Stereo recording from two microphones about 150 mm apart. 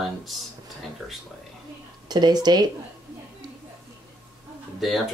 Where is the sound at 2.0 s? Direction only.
30° right (ahead or behind).